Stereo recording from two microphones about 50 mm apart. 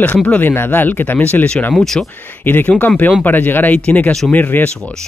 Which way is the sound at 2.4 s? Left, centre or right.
Left.